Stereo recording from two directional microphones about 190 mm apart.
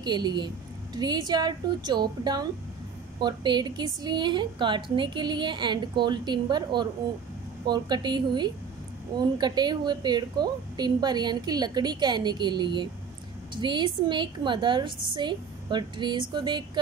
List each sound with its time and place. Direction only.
0.0 s a woman's voice: 20° right (ahead or behind)